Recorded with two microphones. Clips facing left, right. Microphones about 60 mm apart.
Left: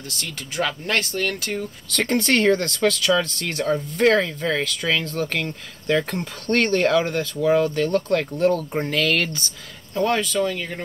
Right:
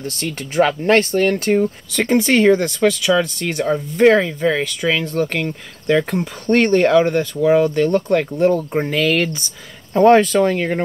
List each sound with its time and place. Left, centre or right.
0.0 s speech: right
1.9 s speech: centre
9.9 s speech: right